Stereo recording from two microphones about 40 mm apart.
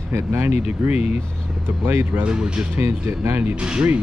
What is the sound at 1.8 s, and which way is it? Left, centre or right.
Speech, right.